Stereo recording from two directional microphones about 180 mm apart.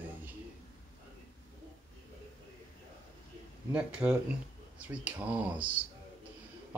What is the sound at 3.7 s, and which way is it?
Speech, 5° right (ahead or behind).